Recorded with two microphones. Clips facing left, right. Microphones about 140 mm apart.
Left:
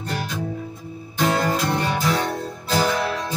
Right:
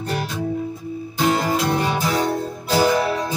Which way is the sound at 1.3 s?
10° right (ahead or behind).